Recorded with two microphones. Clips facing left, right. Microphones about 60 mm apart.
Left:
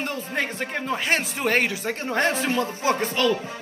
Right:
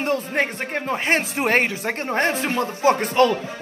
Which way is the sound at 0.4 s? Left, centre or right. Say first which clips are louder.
Right 3 dB; right.